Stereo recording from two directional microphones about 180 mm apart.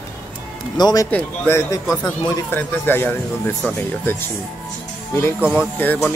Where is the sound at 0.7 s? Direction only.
20° left (ahead or behind).